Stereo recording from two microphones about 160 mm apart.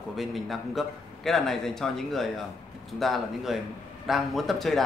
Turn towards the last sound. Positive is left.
turn(degrees=0)  # may be behind; listen again after turning